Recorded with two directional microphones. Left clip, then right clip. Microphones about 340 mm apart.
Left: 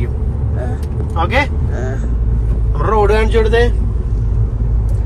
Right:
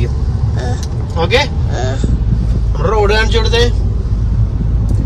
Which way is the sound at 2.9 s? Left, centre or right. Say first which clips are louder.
Even; left.